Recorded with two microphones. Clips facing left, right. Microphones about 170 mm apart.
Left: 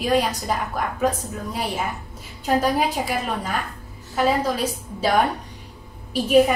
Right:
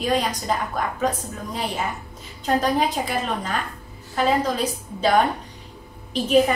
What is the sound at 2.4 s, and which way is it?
A woman's voice, 10° left (ahead or behind).